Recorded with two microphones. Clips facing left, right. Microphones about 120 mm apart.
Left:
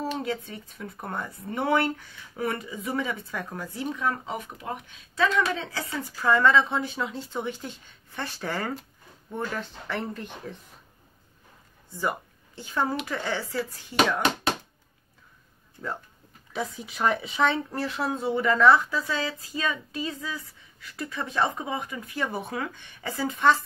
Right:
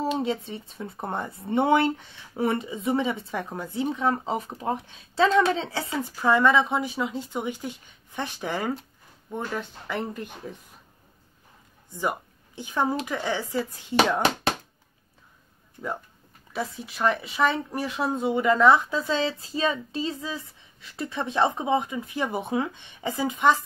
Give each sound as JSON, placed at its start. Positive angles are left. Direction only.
{"t": 0.2, "sound": "speech", "side_deg": -25}
{"t": 11.9, "sound": "speech", "side_deg": -15}
{"t": 16.5, "sound": "speech", "side_deg": 0}
{"t": 17.7, "sound": "speech", "side_deg": -15}